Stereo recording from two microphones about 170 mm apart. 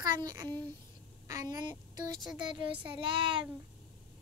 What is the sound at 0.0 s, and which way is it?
A child's voice, 20° right (ahead or behind).